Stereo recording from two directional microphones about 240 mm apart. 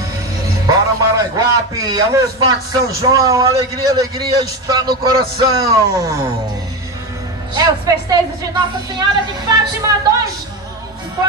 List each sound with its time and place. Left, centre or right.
0.7 s a sound: centre
2.7 s a man's voice: centre
7.5 s a man's voice: centre